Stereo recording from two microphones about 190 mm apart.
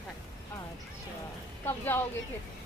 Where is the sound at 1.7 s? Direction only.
10° left (ahead or behind).